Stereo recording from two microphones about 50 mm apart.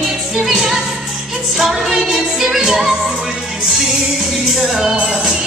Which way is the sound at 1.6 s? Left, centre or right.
Centre.